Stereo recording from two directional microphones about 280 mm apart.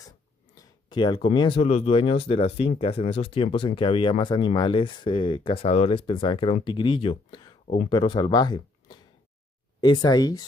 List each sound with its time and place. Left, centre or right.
0.8 s speech: centre